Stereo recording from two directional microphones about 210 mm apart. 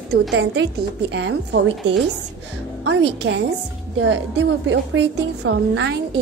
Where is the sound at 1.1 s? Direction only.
55° right (ahead or behind).